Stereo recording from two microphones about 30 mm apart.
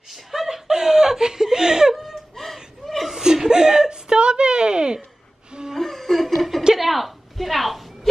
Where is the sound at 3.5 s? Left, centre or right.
Right.